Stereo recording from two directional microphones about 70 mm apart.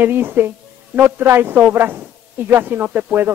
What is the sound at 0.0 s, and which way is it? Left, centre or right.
Speech, right.